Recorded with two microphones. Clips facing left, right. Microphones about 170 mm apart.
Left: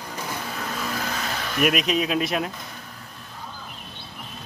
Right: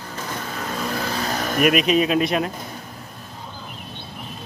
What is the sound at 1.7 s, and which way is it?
Speech, centre (ahead or behind).